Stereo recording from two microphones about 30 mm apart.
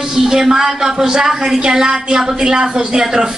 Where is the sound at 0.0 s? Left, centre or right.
Centre.